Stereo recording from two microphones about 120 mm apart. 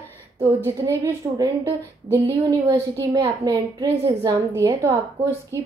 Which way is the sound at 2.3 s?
40° right (ahead or behind).